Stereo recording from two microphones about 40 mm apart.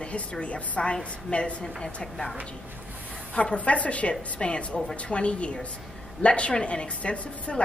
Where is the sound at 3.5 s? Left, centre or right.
Left.